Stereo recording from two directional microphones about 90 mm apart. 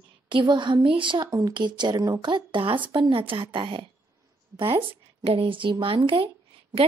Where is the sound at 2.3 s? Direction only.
65° right (ahead or behind).